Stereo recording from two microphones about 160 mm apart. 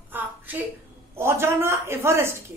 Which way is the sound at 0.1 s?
10° right (ahead or behind).